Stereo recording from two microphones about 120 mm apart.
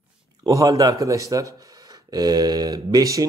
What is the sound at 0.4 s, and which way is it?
Speech, 30° right (ahead or behind).